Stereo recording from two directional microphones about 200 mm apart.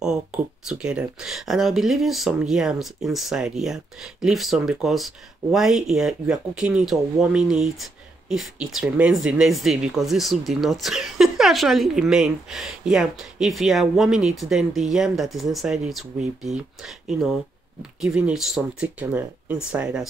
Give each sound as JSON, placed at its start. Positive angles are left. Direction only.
{"t": 0.3, "sound": "speech", "side_deg": -5}